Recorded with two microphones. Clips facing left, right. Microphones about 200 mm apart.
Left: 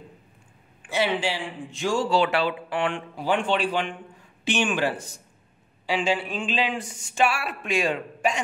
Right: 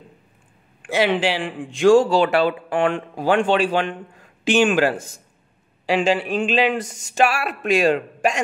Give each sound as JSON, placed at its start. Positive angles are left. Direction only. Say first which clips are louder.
{"t": 0.8, "sound": "a man's voice", "louder": "right 6 dB", "side_deg": -90}
{"t": 2.0, "sound": "speech", "louder": "right 6 dB", "side_deg": -45}
{"t": 3.2, "sound": "a man's voice", "louder": "right 6 dB", "side_deg": -90}
{"t": 7.1, "sound": "speech", "louder": "right 4 dB", "side_deg": -80}